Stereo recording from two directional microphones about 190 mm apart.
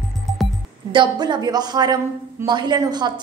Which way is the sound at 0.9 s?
25° right (ahead or behind).